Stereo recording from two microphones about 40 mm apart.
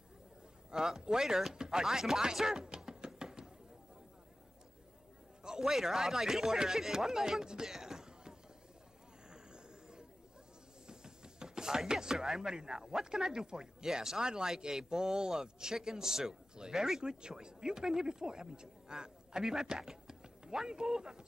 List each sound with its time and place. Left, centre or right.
0.7 s speech: centre
5.6 s speech: centre
9.3 s a sound: right
10.9 s speech: centre
17.0 s speech: centre